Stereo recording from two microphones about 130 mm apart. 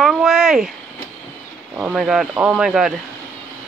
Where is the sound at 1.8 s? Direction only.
5° right (ahead or behind).